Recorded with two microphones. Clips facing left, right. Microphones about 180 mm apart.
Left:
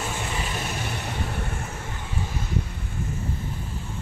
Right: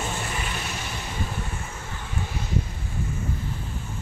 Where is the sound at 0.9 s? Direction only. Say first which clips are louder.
Left 2 dB; 65° left (ahead or behind).